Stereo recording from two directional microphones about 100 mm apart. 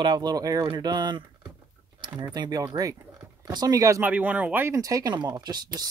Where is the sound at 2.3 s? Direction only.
45° right (ahead or behind).